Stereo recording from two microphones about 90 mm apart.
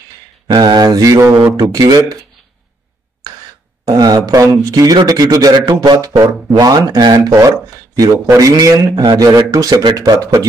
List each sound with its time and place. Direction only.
0.5 s speech: 50° right (ahead or behind)
3.8 s speech: 45° right (ahead or behind)